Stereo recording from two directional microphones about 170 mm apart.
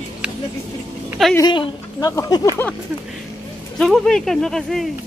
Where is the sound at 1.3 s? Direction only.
25° left (ahead or behind).